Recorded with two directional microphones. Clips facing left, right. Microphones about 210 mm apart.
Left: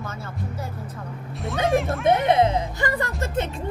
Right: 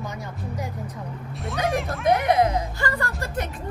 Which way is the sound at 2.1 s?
30° left (ahead or behind).